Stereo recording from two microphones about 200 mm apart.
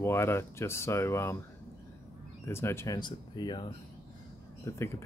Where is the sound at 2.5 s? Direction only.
10° left (ahead or behind).